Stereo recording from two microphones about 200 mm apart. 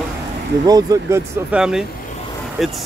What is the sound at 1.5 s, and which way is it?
Speech, 5° right (ahead or behind).